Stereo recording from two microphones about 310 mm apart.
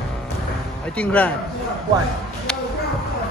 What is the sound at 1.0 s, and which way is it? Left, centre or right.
Speech, centre.